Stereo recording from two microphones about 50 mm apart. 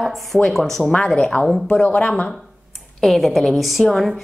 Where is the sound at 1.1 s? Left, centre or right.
Left.